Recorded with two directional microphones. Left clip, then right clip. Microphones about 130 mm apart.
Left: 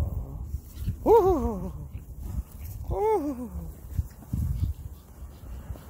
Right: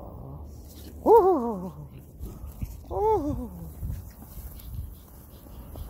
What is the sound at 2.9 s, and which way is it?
Speech, 10° left (ahead or behind).